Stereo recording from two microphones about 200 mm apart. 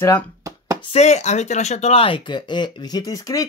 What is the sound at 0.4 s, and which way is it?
Chopping, 15° right (ahead or behind).